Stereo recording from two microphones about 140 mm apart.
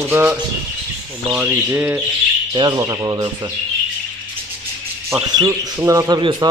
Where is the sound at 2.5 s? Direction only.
30° right (ahead or behind).